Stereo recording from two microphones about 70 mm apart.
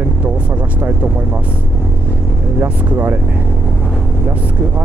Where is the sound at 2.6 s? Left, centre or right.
Right.